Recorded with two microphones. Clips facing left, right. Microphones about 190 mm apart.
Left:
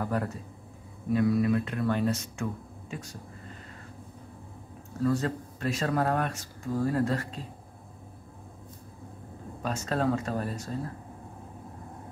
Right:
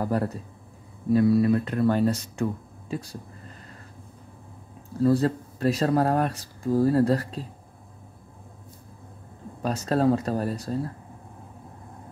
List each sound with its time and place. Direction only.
0.0 s speech: 35° right (ahead or behind)
5.0 s speech: 35° right (ahead or behind)
9.6 s speech: 35° right (ahead or behind)